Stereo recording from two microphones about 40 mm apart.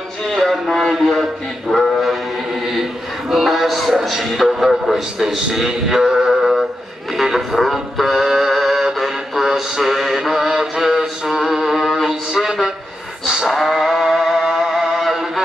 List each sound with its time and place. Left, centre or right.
0.3 s speech: centre
0.9 s speech: centre
1.7 s dog: centre
3.3 s a sound: centre
4.0 s a man's voice: centre
8.3 s music: centre
9.0 s a sound: centre
10.2 s mantra: centre
12.1 s a sound: centre
13.5 s music: centre